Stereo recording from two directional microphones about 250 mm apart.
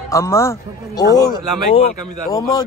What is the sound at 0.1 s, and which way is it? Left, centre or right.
Speech, centre.